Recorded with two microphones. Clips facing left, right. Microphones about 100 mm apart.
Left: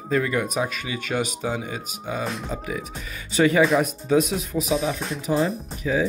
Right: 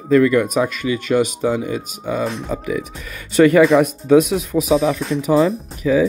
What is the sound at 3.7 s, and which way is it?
Speech, 75° right (ahead or behind).